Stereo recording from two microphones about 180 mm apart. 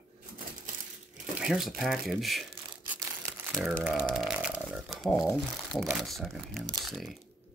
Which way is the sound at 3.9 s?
5° left (ahead or behind).